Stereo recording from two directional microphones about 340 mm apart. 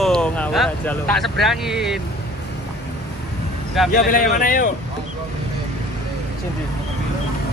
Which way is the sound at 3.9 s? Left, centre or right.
Left.